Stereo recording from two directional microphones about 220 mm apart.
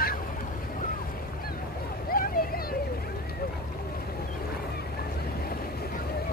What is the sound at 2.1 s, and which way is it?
Vehicle, 40° left (ahead or behind).